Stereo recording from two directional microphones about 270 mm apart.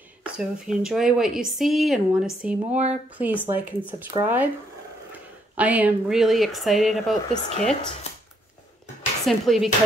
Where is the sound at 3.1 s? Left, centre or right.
Centre.